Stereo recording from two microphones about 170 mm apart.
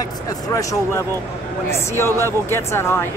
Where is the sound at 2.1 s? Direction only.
15° left (ahead or behind).